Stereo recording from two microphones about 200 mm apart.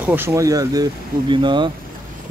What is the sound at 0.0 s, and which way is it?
Speech, 10° right (ahead or behind).